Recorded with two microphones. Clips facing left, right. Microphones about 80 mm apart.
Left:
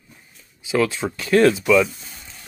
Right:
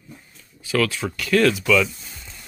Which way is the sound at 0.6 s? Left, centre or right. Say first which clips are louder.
Left 2 dB; left.